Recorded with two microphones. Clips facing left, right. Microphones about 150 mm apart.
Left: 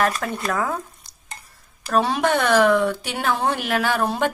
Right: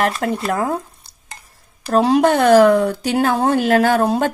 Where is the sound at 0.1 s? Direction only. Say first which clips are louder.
Right 5 dB; 30° right (ahead or behind).